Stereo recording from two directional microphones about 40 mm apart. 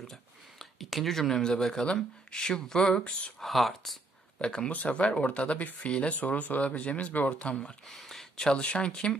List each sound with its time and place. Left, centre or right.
0.0 s a sound: centre
1.6 s speech: centre
3.3 s speech: centre
4.6 s speech: left
6.8 s speech: left
7.9 s a sound: centre
8.4 s speech: centre
8.6 s speech: left